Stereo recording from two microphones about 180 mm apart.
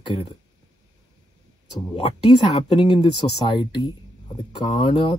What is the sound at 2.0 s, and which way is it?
Speech, 35° left (ahead or behind).